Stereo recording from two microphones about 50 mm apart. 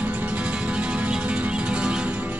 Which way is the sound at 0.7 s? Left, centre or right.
Right.